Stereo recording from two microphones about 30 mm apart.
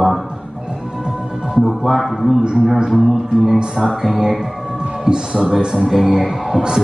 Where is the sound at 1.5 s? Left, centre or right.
Right.